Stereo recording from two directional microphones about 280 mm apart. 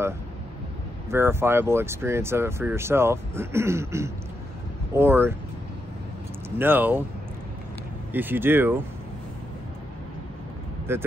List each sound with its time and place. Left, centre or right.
1.1 s speech: centre
6.6 s speech: centre
8.1 s speech: centre
10.9 s speech: centre